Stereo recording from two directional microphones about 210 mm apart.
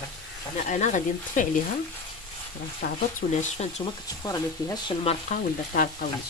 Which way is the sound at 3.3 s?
35° left (ahead or behind).